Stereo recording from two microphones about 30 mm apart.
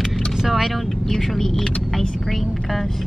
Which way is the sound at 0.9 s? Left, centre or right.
Centre.